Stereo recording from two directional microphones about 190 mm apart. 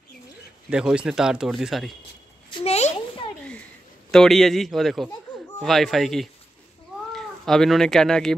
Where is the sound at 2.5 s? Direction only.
30° left (ahead or behind).